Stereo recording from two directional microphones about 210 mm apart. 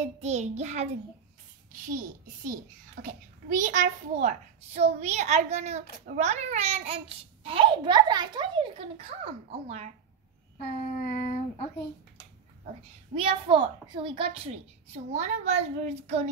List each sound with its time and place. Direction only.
0.0 s a child's voice: 30° right (ahead or behind)
1.9 s a child's voice: 40° right (ahead or behind)
10.6 s a sound: 45° left (ahead or behind)
13.1 s a child's voice: 25° right (ahead or behind)